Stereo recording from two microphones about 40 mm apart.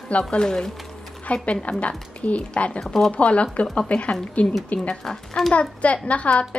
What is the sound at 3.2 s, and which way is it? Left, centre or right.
Speech, left.